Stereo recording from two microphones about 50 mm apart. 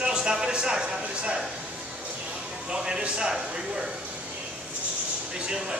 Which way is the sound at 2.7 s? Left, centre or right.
Centre.